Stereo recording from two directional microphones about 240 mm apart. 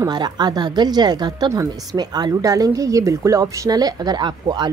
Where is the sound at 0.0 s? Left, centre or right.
Centre.